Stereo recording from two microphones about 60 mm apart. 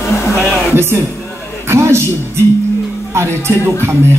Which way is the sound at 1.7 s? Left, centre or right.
Right.